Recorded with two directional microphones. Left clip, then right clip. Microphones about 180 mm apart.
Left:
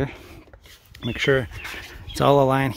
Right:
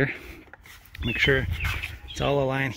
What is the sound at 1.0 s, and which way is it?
Speech, 15° left (ahead or behind).